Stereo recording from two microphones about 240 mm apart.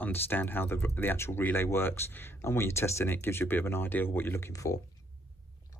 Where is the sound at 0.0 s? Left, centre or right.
Centre.